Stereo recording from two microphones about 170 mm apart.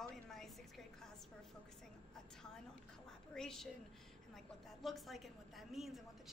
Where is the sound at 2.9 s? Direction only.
5° left (ahead or behind).